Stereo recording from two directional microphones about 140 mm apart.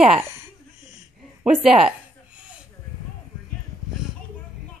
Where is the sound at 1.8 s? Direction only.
10° right (ahead or behind).